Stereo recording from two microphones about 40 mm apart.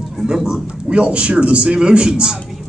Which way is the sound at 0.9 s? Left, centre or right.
Right.